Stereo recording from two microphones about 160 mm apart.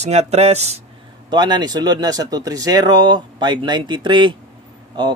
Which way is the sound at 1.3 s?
25° right (ahead or behind).